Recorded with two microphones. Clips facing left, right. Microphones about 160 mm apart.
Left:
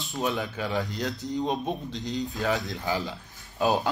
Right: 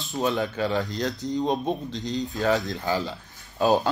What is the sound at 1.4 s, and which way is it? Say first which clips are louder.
Speech: right 3 dB; 30° right (ahead or behind).